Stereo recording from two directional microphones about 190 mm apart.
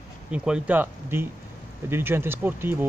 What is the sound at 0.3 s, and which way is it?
Speech, 5° right (ahead or behind).